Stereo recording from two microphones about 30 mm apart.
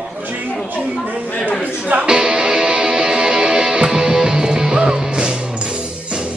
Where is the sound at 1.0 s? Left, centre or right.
Right.